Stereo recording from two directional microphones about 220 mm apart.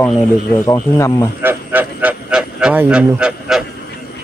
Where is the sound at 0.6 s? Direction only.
15° left (ahead or behind).